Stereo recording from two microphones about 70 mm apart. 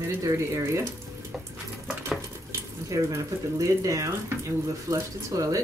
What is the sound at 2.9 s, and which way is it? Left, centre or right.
Speech, right.